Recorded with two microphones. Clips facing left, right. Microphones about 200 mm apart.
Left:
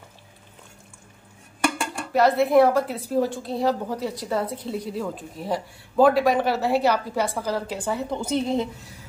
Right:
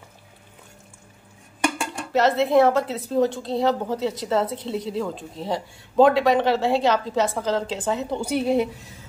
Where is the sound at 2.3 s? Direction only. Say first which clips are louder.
Even; 25° right (ahead or behind).